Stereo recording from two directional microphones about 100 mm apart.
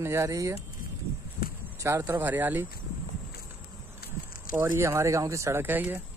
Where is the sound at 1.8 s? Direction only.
30° right (ahead or behind).